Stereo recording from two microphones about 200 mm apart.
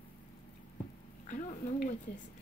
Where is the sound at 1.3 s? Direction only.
40° left (ahead or behind).